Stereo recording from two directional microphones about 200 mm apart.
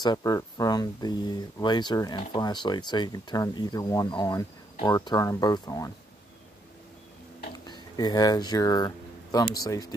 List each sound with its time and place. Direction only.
0.0 s speech: 20° left (ahead or behind)
7.6 s speech: 20° left (ahead or behind)